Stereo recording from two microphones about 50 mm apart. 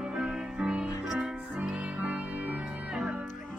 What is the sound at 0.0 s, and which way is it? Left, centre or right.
Music, centre.